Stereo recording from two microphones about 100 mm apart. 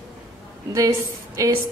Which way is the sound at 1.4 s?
35° right (ahead or behind).